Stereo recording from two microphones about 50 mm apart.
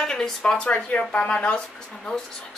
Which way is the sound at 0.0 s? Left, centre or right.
Centre.